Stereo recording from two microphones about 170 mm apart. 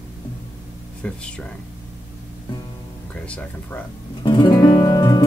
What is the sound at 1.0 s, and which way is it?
Speech, 10° left (ahead or behind).